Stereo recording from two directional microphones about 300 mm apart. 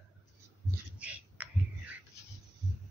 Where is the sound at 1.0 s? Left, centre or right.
Centre.